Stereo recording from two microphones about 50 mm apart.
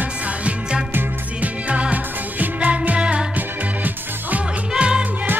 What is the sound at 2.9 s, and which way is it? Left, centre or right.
Music, right.